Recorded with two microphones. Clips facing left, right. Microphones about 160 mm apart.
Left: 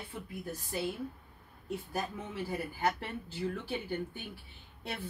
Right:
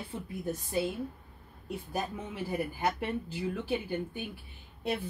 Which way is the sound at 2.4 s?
15° right (ahead or behind).